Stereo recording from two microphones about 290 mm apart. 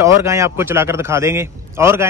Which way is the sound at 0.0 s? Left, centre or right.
Centre.